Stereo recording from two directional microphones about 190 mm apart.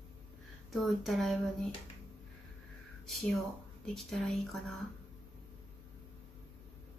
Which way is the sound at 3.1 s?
Centre (ahead or behind).